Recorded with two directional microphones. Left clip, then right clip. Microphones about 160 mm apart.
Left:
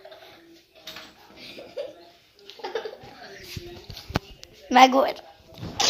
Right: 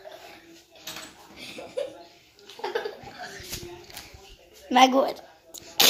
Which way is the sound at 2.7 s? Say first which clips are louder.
Even; 30° right (ahead or behind).